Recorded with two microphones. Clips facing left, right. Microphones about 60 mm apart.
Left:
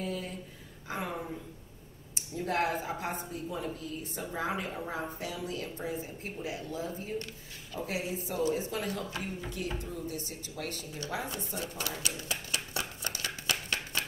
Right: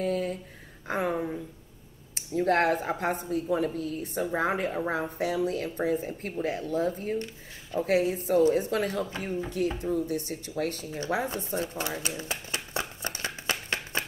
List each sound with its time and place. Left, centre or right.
0.0 s a sound: right
0.8 s a woman's voice: right
1.1 s a woman's voice: right
2.1 s speech: right
9.2 s speech: right
12.2 s a sound: right